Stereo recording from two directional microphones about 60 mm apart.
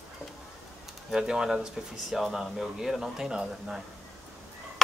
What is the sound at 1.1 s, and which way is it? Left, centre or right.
Speech, centre.